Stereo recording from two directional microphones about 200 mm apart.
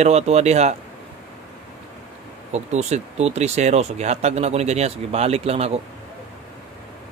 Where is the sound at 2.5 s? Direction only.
35° right (ahead or behind).